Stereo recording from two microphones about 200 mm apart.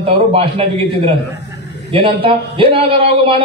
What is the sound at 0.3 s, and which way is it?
A man's voice, 30° right (ahead or behind).